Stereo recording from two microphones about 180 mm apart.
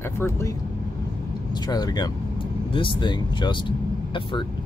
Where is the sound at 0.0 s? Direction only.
15° left (ahead or behind).